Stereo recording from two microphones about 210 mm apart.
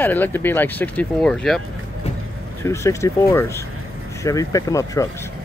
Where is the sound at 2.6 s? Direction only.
15° left (ahead or behind).